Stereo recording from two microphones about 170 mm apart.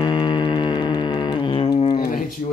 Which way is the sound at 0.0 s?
25° left (ahead or behind).